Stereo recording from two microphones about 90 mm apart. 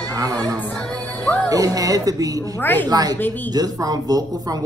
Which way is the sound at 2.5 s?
20° left (ahead or behind).